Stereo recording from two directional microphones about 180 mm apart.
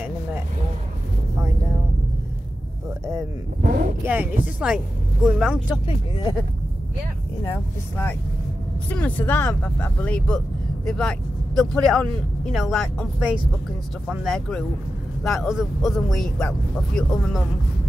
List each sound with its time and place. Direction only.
4.0 s speech: 10° right (ahead or behind)
5.9 s speech: 25° left (ahead or behind)
7.4 s speech: 10° left (ahead or behind)